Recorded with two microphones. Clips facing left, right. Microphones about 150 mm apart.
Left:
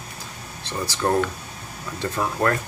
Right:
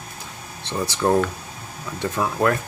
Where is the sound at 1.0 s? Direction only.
10° right (ahead or behind).